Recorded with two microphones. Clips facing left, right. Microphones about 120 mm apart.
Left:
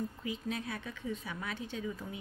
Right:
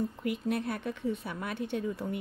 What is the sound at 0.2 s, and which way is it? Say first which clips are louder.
A woman's voice: right 6 dB; 60° right (ahead or behind).